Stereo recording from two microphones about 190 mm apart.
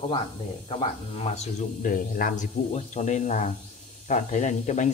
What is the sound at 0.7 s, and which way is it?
Speech, 30° left (ahead or behind).